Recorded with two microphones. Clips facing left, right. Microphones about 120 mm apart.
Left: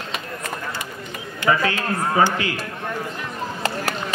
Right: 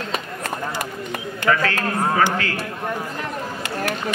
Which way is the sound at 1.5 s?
15° left (ahead or behind).